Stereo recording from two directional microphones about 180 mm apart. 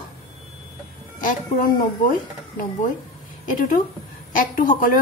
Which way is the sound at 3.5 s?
50° left (ahead or behind).